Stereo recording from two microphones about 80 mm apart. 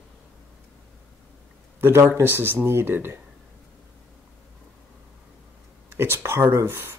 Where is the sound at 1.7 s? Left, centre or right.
Right.